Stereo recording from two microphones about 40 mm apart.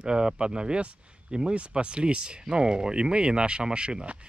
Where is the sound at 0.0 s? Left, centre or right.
Right.